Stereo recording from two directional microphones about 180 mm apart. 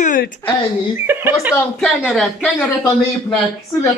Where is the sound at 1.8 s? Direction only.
Centre (ahead or behind).